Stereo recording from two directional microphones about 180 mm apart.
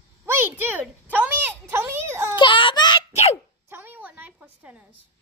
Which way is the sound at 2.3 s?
25° left (ahead or behind).